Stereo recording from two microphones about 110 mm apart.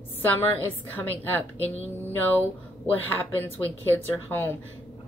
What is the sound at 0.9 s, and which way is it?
Speech, 15° left (ahead or behind).